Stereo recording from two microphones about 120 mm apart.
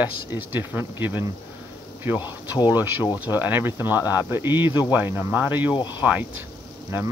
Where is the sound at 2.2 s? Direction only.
35° left (ahead or behind).